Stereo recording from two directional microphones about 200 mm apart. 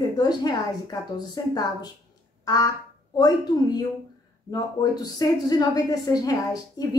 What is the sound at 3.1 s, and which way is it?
A woman's voice, 20° left (ahead or behind).